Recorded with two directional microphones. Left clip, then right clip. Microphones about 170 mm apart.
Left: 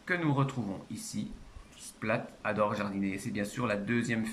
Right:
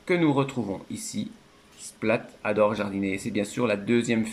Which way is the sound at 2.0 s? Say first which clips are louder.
Right 7 dB; 20° right (ahead or behind).